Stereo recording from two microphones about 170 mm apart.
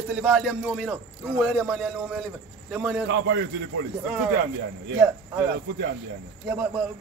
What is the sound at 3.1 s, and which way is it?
Speech, 90° right.